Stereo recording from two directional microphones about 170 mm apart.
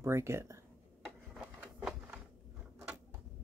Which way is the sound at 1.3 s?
5° right (ahead or behind).